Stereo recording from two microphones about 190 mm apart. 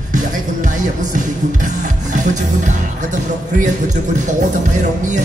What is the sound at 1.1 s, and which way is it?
Music, 40° right (ahead or behind).